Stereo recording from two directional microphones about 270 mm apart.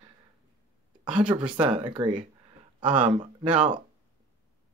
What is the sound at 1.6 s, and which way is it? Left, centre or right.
Speech, centre.